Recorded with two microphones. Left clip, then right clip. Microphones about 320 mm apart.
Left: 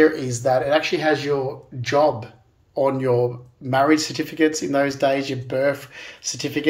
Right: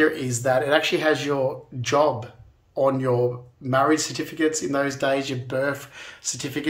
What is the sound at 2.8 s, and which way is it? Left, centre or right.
Speech, centre.